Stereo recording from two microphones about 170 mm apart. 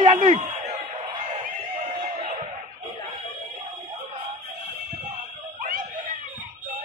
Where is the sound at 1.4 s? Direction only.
40° right (ahead or behind).